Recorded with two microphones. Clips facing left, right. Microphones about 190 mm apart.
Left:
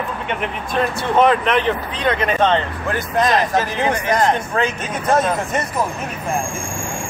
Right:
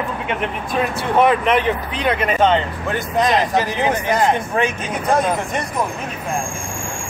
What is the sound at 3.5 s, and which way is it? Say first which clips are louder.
Speech: even; 15° right (ahead or behind).